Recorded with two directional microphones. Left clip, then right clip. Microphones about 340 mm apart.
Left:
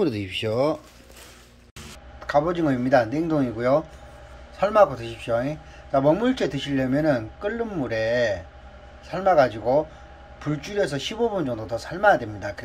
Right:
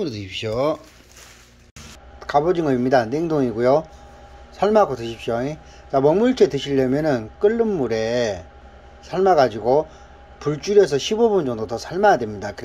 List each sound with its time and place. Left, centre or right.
0.0 s speech: centre
2.2 s a man's voice: centre